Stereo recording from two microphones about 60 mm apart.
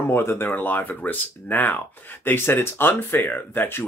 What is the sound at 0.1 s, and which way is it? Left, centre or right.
Speech, left.